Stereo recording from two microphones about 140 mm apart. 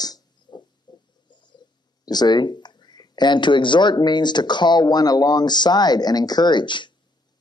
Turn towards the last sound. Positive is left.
turn(degrees=35)  # may be behind; listen again after turning